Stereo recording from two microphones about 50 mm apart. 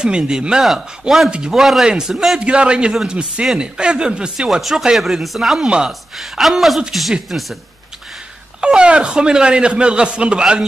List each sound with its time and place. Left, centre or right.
0.0 s a woman's voice: centre
4.5 s a woman's voice: centre
8.5 s speech: centre